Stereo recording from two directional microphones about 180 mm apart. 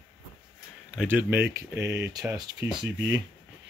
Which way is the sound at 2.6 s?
5° right (ahead or behind).